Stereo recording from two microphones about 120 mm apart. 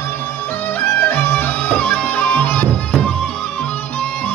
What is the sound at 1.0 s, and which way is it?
Music, 15° left (ahead or behind).